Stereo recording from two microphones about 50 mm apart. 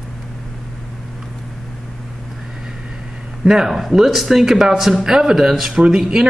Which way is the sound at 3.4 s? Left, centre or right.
Centre.